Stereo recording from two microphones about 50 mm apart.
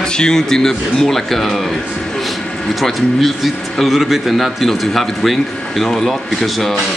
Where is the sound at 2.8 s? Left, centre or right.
Centre.